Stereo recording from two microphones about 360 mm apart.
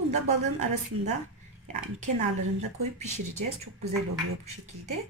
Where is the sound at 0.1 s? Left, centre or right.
Centre.